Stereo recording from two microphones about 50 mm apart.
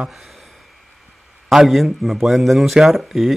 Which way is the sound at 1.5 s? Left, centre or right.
Centre.